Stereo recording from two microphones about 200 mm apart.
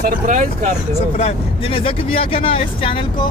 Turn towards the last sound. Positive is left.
turn(degrees=25)  # may be behind; listen again after turning